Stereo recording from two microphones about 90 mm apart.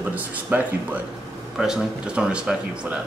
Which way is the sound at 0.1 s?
20° right (ahead or behind).